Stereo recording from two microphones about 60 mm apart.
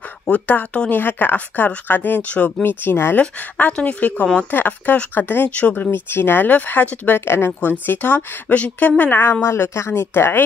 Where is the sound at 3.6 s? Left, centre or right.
Left.